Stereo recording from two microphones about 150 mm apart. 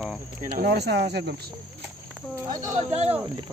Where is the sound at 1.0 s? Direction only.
90° right.